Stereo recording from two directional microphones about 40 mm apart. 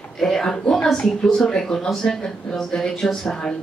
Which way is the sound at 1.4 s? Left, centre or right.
Centre.